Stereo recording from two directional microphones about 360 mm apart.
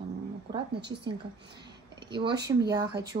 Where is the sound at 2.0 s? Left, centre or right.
Centre.